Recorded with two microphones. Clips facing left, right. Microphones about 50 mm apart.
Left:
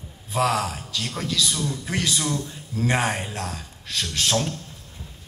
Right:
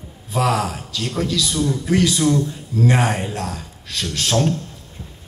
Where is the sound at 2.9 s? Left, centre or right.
Right.